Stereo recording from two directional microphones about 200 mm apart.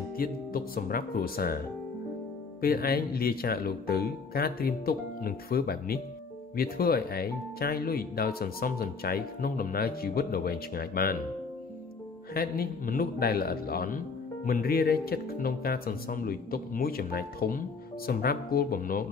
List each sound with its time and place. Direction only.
0.2 s a man's voice: 45° left (ahead or behind)
2.6 s a man's voice: 50° left (ahead or behind)
12.4 s a man's voice: 45° left (ahead or behind)